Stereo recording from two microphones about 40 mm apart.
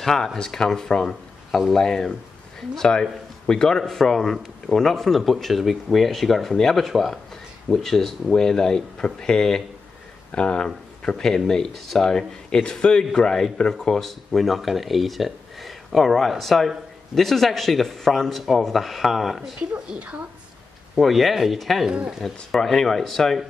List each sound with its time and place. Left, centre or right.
0.0 s speech: centre
6.9 s speech: centre
7.7 s a man's voice: centre
12.2 s a man's voice: left
14.3 s speech: centre
19.7 s a woman's voice: right
20.9 s speech: centre